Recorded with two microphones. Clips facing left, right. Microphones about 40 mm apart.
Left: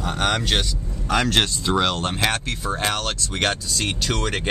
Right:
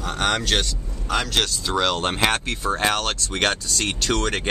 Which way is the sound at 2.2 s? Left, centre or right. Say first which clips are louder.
Right 2 dB; centre.